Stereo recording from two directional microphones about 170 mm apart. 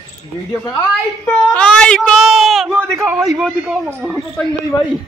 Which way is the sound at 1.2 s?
5° left (ahead or behind).